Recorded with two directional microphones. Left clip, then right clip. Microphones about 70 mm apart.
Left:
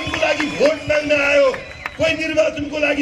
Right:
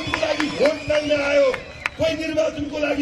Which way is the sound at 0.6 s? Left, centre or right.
Left.